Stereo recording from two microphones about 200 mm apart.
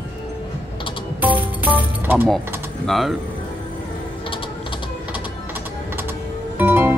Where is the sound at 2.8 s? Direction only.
Centre (ahead or behind).